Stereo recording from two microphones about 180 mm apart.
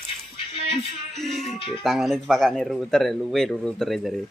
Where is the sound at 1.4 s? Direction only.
35° left (ahead or behind).